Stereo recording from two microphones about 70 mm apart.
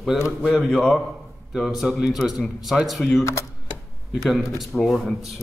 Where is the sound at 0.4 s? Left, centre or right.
Centre.